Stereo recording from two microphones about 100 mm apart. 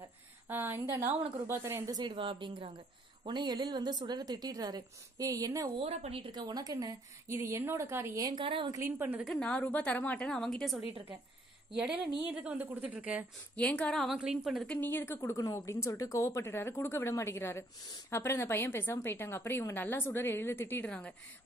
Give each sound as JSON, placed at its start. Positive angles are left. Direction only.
{"t": 0.5, "sound": "a woman's voice", "side_deg": -20}
{"t": 1.9, "sound": "a woman's voice", "side_deg": -45}
{"t": 5.8, "sound": "speech", "side_deg": -80}
{"t": 7.2, "sound": "a woman's voice", "side_deg": -25}
{"t": 9.0, "sound": "speech", "side_deg": -10}
{"t": 9.3, "sound": "a woman's voice", "side_deg": 15}
{"t": 12.4, "sound": "speech", "side_deg": -15}
{"t": 13.6, "sound": "a woman's voice", "side_deg": 10}
{"t": 14.1, "sound": "a woman's voice", "side_deg": -5}
{"t": 14.7, "sound": "a woman's voice", "side_deg": 20}
{"t": 15.1, "sound": "a woman's voice", "side_deg": 35}